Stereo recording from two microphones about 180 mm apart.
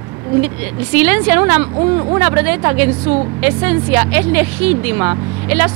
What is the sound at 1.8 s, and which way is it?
Speech, 30° right (ahead or behind).